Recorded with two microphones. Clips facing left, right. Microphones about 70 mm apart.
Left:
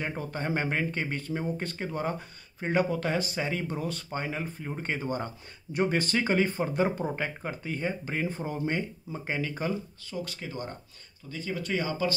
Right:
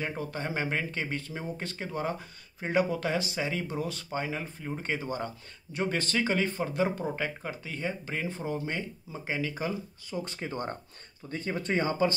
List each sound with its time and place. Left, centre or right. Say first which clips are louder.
0.0 s speech: left 1 dB; centre
10.0 s speech: right 2 dB; right
10.3 s speech: right 3 dB; right